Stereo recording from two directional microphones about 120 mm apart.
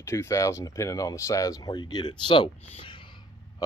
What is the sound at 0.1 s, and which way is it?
Speech, 25° left (ahead or behind).